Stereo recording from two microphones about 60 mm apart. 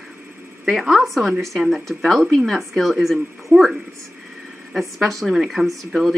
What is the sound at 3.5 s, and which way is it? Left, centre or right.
Speech, right.